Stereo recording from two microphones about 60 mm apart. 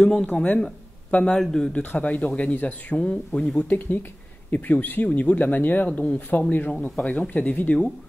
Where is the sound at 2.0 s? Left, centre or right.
Left.